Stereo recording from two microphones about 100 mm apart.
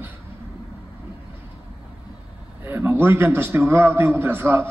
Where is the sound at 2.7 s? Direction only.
20° right (ahead or behind).